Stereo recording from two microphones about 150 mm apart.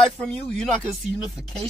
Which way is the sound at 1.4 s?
Centre (ahead or behind).